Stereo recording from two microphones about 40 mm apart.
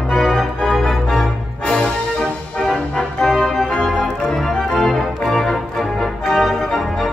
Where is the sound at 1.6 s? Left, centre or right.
Left.